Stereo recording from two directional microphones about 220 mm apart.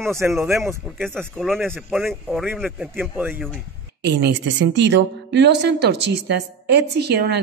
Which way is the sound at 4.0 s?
50° right (ahead or behind).